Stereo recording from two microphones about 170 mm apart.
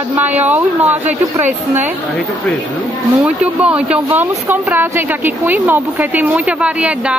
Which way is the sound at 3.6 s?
5° right (ahead or behind).